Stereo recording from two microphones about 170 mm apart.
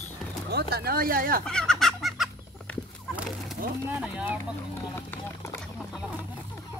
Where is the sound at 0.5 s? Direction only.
70° right (ahead or behind).